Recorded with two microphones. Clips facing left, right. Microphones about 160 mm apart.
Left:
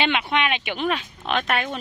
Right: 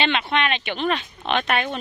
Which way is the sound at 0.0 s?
10° left (ahead or behind).